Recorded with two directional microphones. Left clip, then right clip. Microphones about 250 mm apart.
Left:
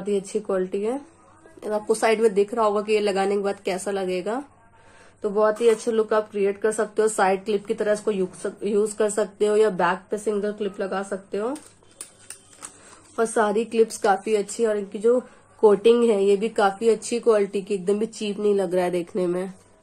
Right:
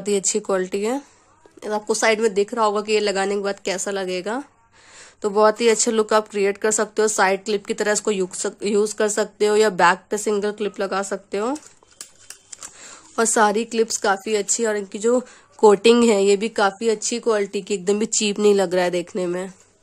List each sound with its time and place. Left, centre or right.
0.0 s speech: right
1.6 s speech: right
5.2 s speech: right
13.1 s speech: right